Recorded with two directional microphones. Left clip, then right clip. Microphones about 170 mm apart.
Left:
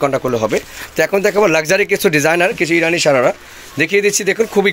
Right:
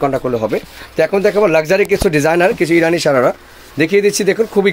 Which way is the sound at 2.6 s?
15° right (ahead or behind).